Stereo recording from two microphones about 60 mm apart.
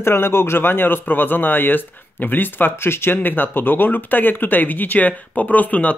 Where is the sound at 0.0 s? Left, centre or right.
Left.